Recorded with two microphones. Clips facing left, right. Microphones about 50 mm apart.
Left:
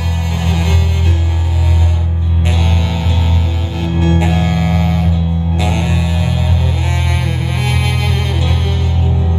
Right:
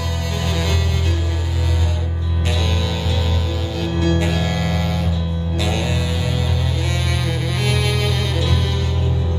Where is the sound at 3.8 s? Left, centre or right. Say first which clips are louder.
Left 4 dB; left.